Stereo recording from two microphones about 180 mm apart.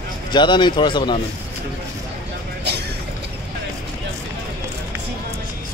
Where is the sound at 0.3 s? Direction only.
25° left (ahead or behind).